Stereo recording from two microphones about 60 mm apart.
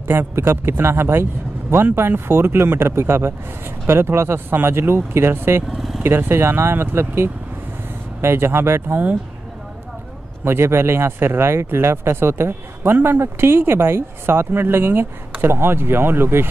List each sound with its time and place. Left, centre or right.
0.4 s speech: right
5.8 s vehicle: centre
6.0 s speech: right
10.4 s speech: right